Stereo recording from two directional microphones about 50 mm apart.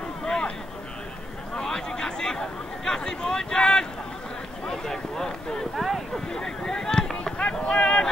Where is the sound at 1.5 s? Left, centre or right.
Centre.